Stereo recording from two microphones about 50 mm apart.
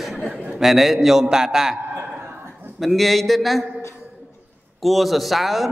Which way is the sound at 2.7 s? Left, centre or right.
Centre.